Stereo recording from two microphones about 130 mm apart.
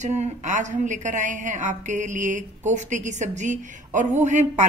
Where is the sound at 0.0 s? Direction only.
60° right (ahead or behind).